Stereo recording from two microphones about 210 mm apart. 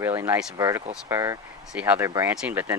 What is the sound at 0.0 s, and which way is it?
Speech, 10° right (ahead or behind).